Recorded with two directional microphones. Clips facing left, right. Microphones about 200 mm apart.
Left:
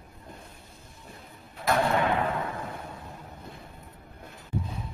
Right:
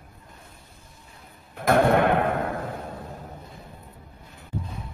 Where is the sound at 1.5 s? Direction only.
55° right (ahead or behind).